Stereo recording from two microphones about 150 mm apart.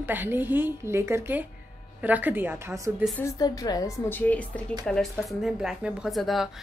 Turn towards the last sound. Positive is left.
turn(degrees=0)  # may be behind; listen again after turning